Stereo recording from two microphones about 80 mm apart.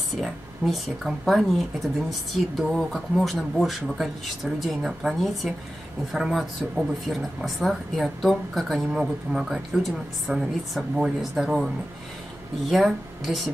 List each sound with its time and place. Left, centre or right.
0.2 s speech: centre